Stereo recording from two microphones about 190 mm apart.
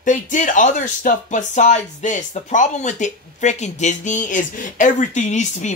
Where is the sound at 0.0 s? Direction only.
40° left (ahead or behind).